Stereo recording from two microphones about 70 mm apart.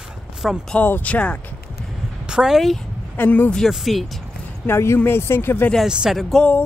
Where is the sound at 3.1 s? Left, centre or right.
Left.